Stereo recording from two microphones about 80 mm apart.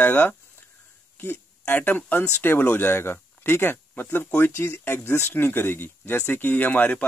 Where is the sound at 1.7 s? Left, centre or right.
Left.